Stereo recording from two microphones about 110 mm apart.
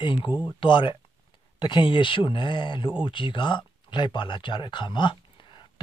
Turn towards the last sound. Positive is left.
turn(degrees=45)  # may be behind; listen again after turning